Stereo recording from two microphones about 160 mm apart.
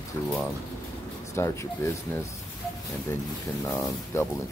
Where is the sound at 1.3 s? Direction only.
15° left (ahead or behind).